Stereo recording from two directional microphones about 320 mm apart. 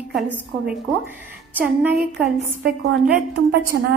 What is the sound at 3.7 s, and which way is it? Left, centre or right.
Speech, right.